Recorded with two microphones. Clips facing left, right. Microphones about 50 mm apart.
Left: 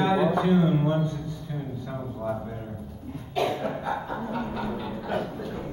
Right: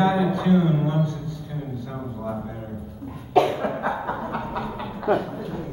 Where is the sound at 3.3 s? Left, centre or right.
Right.